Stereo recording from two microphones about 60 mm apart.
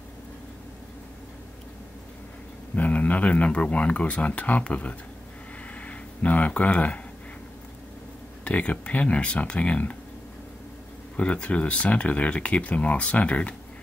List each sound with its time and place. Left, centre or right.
2.7 s speech: left
8.5 s speech: left
11.1 s speech: centre